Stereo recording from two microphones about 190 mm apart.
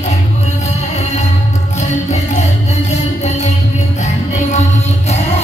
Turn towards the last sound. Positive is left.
turn(degrees=35)  # may be behind; listen again after turning